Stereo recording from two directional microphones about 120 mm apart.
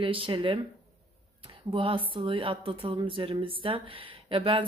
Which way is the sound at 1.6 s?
45° right (ahead or behind).